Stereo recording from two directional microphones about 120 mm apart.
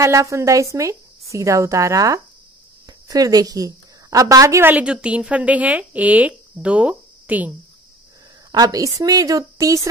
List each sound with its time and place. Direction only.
0.0 s a woman's voice: 25° right (ahead or behind)
8.5 s a woman's voice: 30° right (ahead or behind)